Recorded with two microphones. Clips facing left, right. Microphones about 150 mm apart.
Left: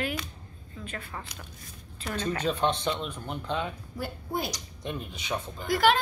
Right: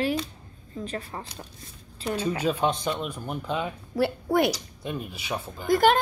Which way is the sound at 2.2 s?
10° right (ahead or behind).